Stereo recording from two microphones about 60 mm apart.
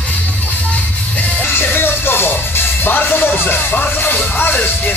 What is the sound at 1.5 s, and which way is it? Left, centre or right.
Music, left.